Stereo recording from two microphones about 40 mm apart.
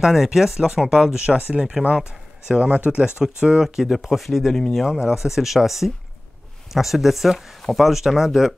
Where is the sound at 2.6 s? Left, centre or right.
Right.